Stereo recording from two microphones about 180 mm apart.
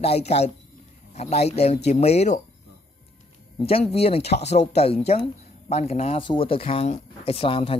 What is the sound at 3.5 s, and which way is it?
Speech, 35° left (ahead or behind).